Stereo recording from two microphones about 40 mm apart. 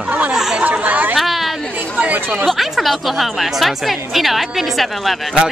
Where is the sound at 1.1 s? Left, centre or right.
Centre.